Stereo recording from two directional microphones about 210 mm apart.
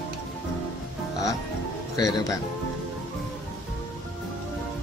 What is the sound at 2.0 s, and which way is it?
Speech, 15° left (ahead or behind).